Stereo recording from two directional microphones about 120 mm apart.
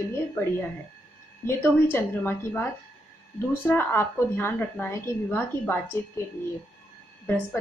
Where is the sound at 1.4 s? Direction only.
20° left (ahead or behind).